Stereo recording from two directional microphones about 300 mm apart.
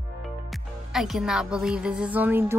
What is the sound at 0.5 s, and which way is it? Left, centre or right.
Speech, centre.